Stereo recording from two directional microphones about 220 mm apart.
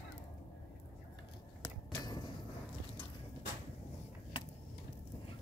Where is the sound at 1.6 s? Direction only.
20° left (ahead or behind).